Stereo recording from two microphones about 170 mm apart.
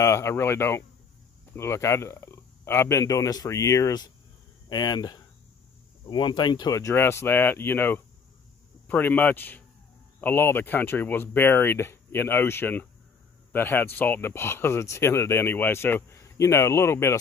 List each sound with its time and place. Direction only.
0.0 s speech: 15° left (ahead or behind)